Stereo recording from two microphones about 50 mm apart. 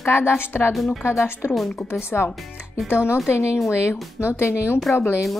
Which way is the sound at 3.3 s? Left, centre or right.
Left.